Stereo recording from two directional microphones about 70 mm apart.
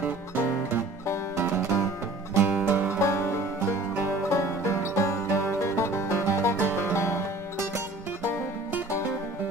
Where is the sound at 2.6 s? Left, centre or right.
Right.